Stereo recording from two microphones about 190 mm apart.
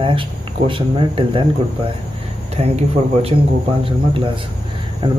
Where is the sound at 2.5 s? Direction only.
30° right (ahead or behind).